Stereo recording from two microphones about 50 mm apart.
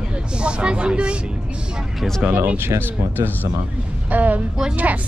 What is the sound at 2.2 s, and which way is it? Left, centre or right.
Speech, right.